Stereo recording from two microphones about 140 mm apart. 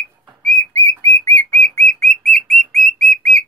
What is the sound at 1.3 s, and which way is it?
Bird, 10° left (ahead or behind).